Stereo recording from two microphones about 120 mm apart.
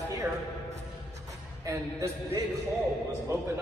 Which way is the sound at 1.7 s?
25° right (ahead or behind).